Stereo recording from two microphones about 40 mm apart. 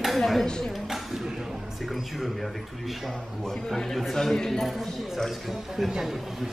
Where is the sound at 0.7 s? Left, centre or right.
Centre.